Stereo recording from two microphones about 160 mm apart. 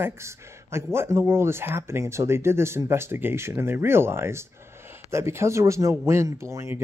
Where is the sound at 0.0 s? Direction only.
15° right (ahead or behind).